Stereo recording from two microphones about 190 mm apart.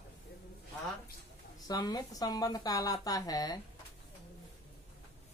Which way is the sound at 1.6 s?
20° left (ahead or behind).